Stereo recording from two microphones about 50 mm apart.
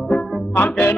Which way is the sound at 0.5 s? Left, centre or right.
Left.